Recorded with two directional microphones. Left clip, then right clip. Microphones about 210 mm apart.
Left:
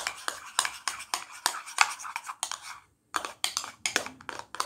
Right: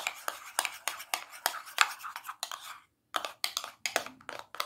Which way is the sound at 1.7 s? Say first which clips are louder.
Left 2 dB; centre (ahead or behind).